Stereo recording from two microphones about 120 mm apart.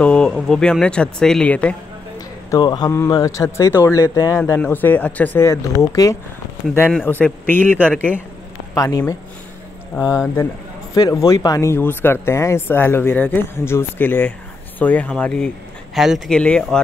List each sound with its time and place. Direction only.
0.0 s speech: 10° left (ahead or behind)
2.1 s a sound: 35° left (ahead or behind)
2.9 s speech: 25° left (ahead or behind)
4.6 s speech: 15° left (ahead or behind)
7.1 s speech: 15° left (ahead or behind)
8.7 s speech: 30° left (ahead or behind); by 16.2 s centre (ahead or behind)
16.3 s speech: 10° left (ahead or behind)